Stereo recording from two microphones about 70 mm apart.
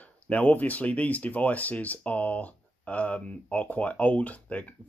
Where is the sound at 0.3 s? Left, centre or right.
Left.